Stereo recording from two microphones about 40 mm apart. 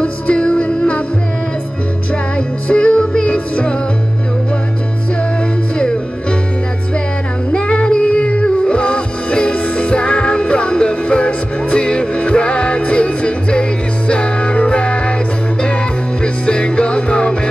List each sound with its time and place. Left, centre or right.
0.0 s music: left
2.3 s music: left
7.5 s music: left
16.4 s music: left